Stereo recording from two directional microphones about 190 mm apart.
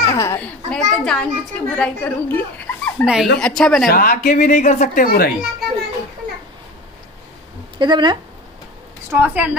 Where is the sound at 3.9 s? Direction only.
45° left (ahead or behind).